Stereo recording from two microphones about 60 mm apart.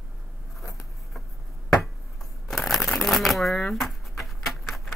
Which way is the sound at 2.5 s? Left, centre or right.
Centre.